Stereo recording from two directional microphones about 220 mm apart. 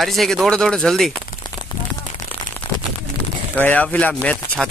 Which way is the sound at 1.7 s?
20° left (ahead or behind).